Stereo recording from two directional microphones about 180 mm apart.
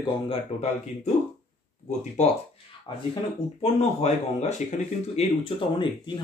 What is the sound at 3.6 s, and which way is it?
Speech, 35° left (ahead or behind).